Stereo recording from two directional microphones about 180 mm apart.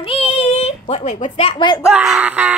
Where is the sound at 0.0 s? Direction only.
30° left (ahead or behind).